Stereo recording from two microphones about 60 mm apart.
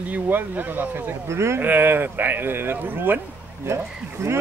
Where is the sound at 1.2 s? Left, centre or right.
Right.